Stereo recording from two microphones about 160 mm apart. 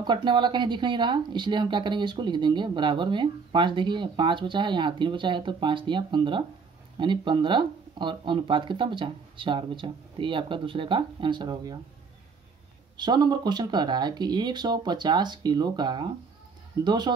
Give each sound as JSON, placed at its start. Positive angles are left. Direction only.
{"t": 0.0, "sound": "speech", "side_deg": -30}
{"t": 12.9, "sound": "speech", "side_deg": -25}